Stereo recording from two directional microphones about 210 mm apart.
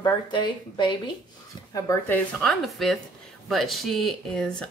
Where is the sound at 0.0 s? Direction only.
20° left (ahead or behind).